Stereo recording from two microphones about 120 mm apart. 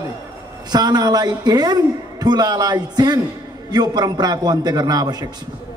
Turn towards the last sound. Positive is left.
turn(degrees=-30)  # may be behind; listen again after turning